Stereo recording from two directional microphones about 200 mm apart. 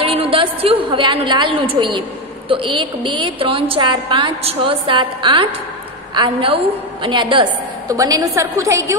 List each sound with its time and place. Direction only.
0.0 s a woman's voice: 25° right (ahead or behind)